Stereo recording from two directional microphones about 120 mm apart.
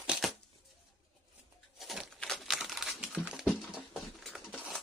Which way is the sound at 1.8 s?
Centre (ahead or behind).